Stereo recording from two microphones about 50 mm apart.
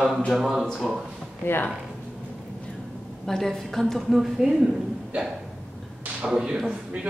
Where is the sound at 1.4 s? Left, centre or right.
Left.